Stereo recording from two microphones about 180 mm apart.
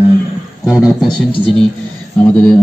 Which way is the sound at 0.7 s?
5° right (ahead or behind).